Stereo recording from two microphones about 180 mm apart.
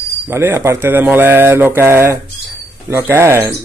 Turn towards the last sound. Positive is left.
turn(degrees=-15)  # may be behind; listen again after turning